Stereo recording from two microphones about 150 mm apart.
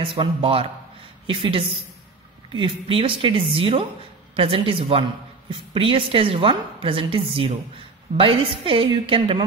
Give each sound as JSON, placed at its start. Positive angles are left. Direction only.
{"t": 0.0, "sound": "a woman's voice", "side_deg": -35}